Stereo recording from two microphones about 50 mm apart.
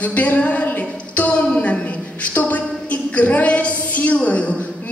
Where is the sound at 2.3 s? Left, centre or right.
Left.